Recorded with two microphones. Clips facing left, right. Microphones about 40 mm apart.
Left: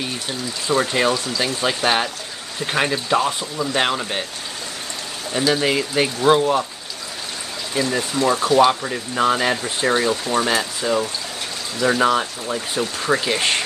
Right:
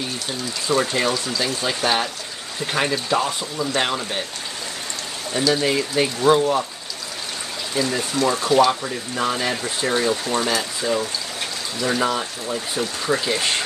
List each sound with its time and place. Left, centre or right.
0.7 s speech: centre
5.3 s speech: centre
7.7 s speech: centre